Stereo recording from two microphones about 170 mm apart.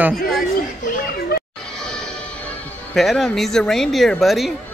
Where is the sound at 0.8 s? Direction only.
50° left (ahead or behind).